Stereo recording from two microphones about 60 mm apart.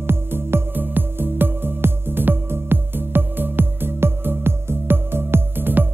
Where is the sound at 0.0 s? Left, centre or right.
Right.